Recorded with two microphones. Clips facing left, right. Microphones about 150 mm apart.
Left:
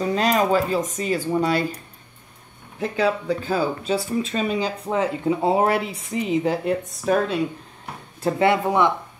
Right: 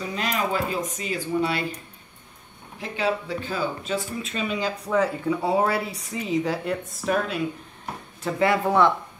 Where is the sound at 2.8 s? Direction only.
40° left (ahead or behind).